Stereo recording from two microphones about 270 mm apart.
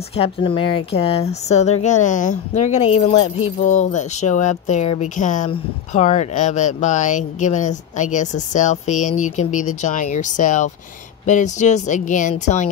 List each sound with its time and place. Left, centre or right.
0.1 s speech: centre